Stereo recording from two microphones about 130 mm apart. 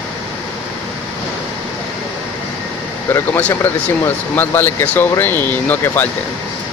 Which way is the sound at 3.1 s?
15° left (ahead or behind).